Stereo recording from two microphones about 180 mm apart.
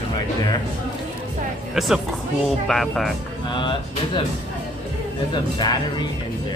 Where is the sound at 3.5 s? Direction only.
25° left (ahead or behind).